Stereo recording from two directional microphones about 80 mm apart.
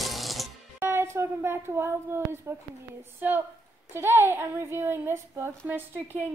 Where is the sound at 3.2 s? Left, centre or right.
Right.